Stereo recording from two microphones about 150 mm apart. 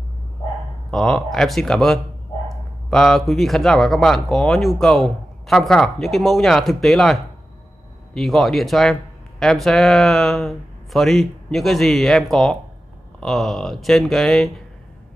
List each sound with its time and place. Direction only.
0.9 s speech: 5° left (ahead or behind)